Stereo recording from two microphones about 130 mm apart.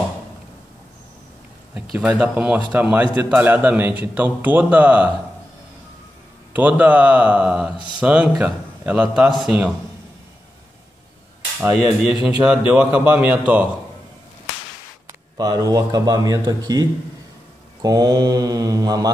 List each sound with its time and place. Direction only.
1.7 s a man's voice: 10° right (ahead or behind)
6.5 s a man's voice: 15° right (ahead or behind)
12.0 s a man's voice: 5° right (ahead or behind)
15.3 s a man's voice: 30° right (ahead or behind)
17.8 s a man's voice: 30° right (ahead or behind)